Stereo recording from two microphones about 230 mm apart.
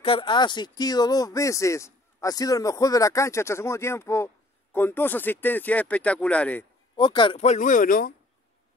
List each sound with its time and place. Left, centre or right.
0.0 s speech: left; by 6.6 s centre
7.0 s speech: left